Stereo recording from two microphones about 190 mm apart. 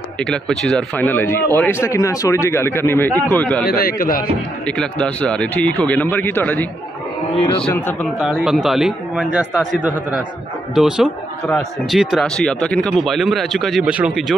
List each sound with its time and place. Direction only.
0.2 s speech: 5° left (ahead or behind)
3.6 s a man's voice: 50° left (ahead or behind)
4.6 s speech: 5° left (ahead or behind)
8.2 s speech: centre (ahead or behind)